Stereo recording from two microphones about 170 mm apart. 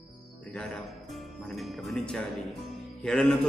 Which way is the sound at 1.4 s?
Centre (ahead or behind).